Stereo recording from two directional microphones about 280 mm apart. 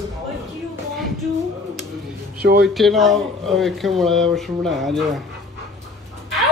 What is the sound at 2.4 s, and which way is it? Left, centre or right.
Speech, right.